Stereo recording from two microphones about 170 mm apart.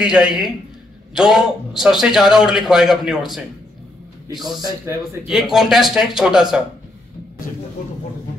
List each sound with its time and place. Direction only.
0.0 s a man's voice: 5° right (ahead or behind)
4.6 s a man's voice: 25° right (ahead or behind)
5.2 s a man's voice: centre (ahead or behind)